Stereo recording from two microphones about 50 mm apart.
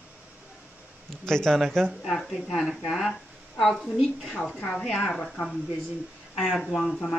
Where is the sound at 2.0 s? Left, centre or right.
Centre.